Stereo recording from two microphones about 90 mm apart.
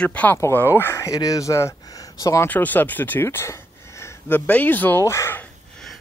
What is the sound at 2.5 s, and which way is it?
Speech, 20° left (ahead or behind).